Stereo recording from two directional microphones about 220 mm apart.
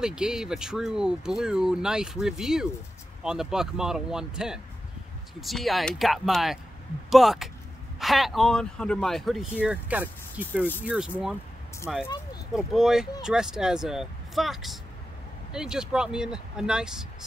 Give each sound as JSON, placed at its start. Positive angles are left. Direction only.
{"t": 0.0, "sound": "speech", "side_deg": -5}